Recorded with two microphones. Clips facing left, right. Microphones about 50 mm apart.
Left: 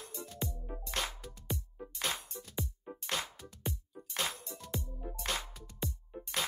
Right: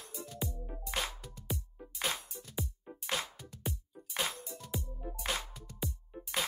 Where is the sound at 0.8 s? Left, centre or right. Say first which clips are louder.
Right 1 dB; centre.